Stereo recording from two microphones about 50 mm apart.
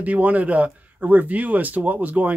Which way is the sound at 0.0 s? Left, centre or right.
Right.